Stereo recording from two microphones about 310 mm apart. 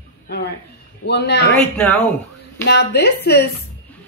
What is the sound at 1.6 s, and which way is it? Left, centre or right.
Speech, centre.